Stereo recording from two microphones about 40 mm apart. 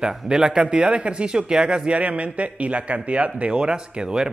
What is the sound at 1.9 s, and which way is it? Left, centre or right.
A man's voice, right.